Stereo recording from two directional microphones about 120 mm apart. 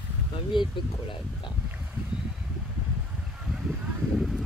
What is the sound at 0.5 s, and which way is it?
Speech, 40° left (ahead or behind).